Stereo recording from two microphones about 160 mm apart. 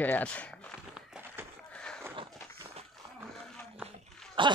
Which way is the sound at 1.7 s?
5° left (ahead or behind).